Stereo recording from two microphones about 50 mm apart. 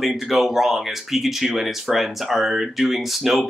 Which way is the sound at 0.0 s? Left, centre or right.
Centre.